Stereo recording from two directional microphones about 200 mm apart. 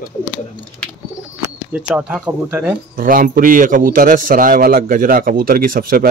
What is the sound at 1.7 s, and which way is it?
Speech, 5° right (ahead or behind).